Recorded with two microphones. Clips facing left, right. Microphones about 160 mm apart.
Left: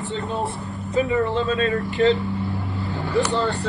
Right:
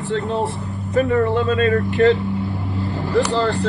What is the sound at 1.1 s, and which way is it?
Speech, 55° right (ahead or behind).